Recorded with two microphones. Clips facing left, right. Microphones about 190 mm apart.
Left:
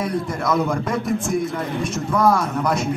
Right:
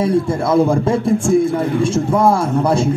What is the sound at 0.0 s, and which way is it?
Speech, 30° right (ahead or behind).